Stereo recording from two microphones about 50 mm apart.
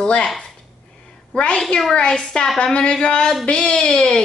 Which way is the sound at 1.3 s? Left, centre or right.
Centre.